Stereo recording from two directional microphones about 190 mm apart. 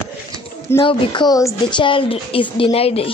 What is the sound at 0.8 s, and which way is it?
Speech, 25° left (ahead or behind).